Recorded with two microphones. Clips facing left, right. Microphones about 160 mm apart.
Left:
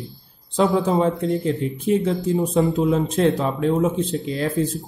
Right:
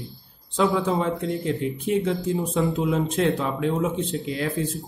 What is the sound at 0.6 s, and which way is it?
Speech, 40° left (ahead or behind).